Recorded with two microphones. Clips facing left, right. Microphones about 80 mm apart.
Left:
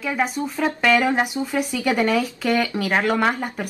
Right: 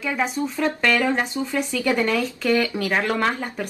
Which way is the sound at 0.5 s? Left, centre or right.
Centre.